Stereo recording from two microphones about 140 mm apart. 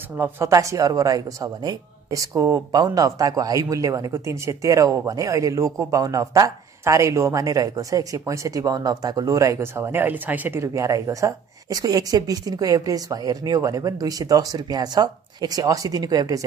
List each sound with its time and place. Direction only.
0.2 s speech: 20° right (ahead or behind)